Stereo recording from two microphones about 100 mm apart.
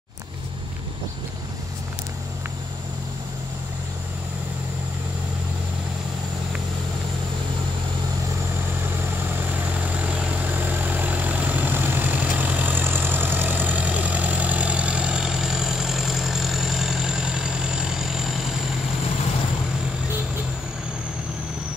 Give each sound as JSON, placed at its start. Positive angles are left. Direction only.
{"t": 9.7, "sound": "vehicle", "side_deg": -15}